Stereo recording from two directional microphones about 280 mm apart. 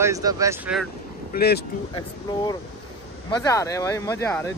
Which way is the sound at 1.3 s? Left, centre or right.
Left.